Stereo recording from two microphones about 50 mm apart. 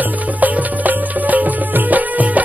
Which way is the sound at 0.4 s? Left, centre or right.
Right.